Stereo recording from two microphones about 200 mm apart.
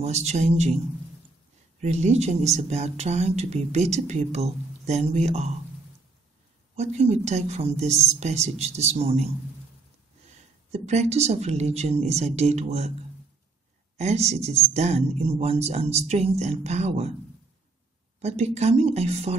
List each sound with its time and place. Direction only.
0.0 s speech: 35° right (ahead or behind)
1.8 s speech: 35° right (ahead or behind)
6.7 s speech: 35° right (ahead or behind)
13.9 s speech: 35° right (ahead or behind)
18.2 s speech: 35° right (ahead or behind)